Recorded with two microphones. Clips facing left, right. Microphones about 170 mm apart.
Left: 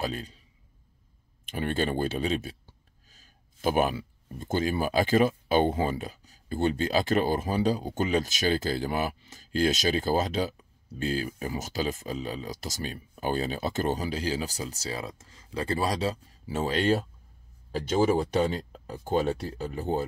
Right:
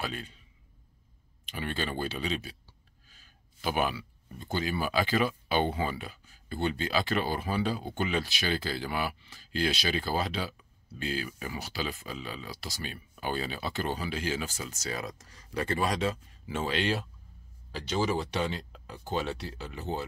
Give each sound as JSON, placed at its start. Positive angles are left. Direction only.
{"t": 0.0, "sound": "a man's voice", "side_deg": 35}
{"t": 1.4, "sound": "speech", "side_deg": 50}